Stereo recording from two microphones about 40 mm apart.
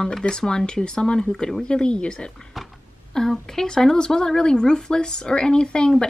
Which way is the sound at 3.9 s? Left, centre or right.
Centre.